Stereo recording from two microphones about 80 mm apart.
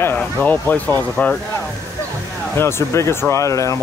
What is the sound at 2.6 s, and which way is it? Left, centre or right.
Speech, left.